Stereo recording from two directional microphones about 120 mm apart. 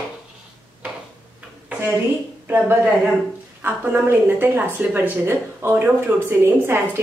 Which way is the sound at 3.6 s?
15° right (ahead or behind).